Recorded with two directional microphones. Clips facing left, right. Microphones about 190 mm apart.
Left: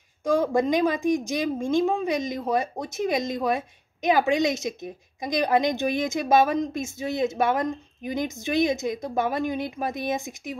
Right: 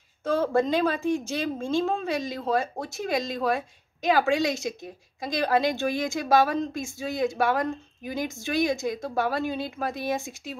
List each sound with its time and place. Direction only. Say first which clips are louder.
0.2 s a woman's voice: left 2 dB; 15° left (ahead or behind)